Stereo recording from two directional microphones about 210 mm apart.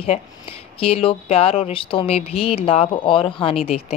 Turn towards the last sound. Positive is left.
turn(degrees=25)  # may be behind; listen again after turning